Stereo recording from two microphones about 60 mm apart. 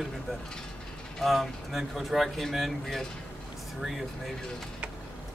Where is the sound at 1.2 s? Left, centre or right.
Centre.